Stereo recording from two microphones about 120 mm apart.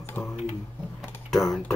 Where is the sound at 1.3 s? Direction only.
Centre (ahead or behind).